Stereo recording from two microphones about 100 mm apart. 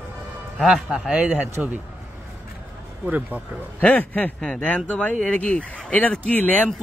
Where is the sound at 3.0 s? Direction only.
15° right (ahead or behind).